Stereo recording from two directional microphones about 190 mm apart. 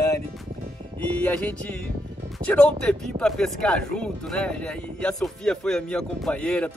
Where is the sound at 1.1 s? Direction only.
5° left (ahead or behind).